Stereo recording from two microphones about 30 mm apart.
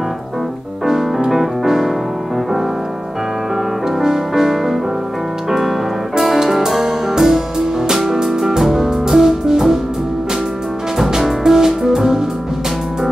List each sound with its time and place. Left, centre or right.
0.8 s music: centre
1.3 s piano: centre
4.0 s music: centre
11.1 s music: centre